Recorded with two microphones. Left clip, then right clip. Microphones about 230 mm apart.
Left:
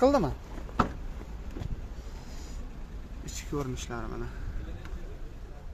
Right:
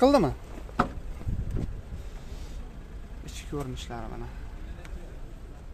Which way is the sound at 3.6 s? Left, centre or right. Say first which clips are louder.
Left 1 dB; centre.